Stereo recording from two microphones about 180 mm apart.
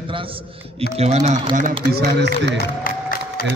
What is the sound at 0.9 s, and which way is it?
Speech, 35° right (ahead or behind).